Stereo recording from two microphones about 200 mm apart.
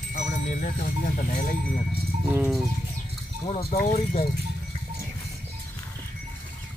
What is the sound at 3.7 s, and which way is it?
Speech, 45° left (ahead or behind).